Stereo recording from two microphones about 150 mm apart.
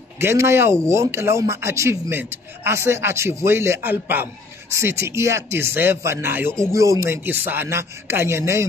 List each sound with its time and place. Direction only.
0.2 s speech: 15° right (ahead or behind)